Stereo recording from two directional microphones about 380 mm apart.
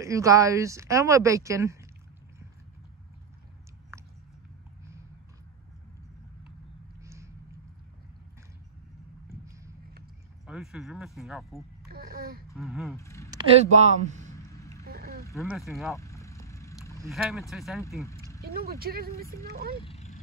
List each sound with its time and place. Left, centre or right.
0.0 s speech: centre
7.0 s crow: centre
10.4 s speech: centre
11.9 s speech: right
12.4 s speech: centre
13.3 s speech: centre
14.3 s a sound: centre
14.9 s a sound: right
15.2 s vehicle: centre
17.0 s speech: centre
18.4 s speech: right
19.8 s cat: centre